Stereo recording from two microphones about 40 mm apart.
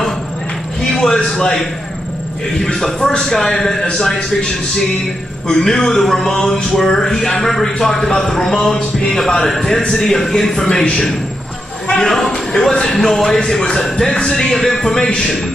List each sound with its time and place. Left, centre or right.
0.8 s a man's voice: centre
2.6 s a man's voice: centre